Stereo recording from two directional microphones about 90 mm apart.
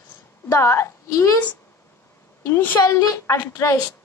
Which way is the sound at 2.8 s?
40° left (ahead or behind).